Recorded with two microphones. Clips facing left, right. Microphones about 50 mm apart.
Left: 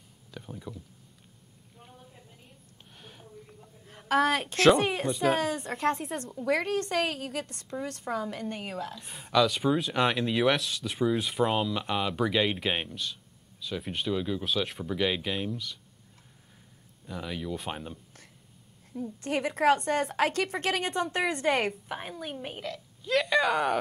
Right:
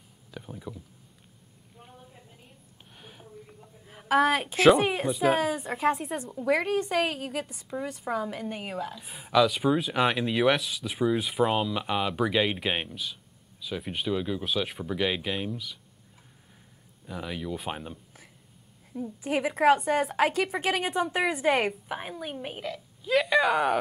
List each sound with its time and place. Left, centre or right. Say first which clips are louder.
0.3 s speech: right 1 dB; centre
1.8 s a sound: right 2 dB; centre
3.0 s a woman's voice: right 2 dB; centre
17.0 s a woman's voice: right 1 dB; centre